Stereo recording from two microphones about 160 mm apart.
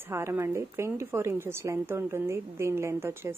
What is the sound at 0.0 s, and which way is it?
Speech, 15° right (ahead or behind).